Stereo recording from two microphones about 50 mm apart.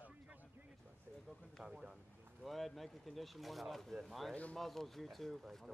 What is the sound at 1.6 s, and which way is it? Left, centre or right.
Speech, centre.